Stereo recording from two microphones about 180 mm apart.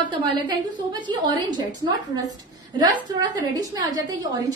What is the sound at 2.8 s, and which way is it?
A woman's voice, 25° right (ahead or behind).